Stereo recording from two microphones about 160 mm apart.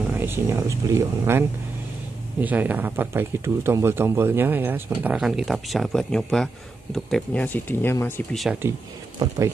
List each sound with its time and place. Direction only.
0.1 s speech: 15° right (ahead or behind)
2.4 s speech: 10° right (ahead or behind); by 8.1 s 15° left (ahead or behind)
8.3 s speech: centre (ahead or behind)